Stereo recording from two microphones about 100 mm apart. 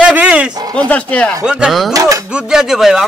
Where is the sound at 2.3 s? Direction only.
5° right (ahead or behind).